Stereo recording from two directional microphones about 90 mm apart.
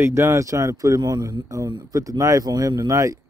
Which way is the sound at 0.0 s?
30° right (ahead or behind).